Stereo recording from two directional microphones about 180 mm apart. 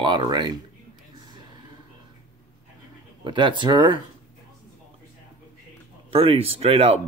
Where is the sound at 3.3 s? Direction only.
25° right (ahead or behind).